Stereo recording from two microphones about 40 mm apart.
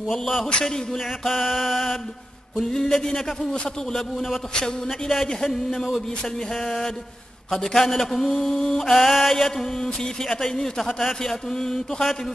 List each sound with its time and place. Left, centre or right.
0.2 s mantra: centre
0.5 s mantra: centre
0.9 s mantra: centre
2.6 s mantra: centre